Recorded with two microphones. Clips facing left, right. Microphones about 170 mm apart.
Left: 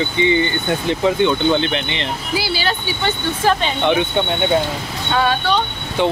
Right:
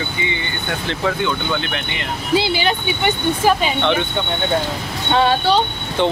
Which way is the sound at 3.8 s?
15° left (ahead or behind).